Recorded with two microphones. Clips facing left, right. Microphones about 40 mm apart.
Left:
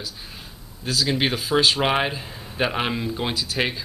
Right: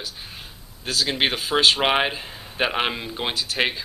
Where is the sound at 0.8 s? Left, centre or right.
Right.